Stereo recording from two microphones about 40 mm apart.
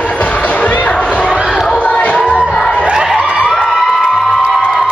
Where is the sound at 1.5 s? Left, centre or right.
Centre.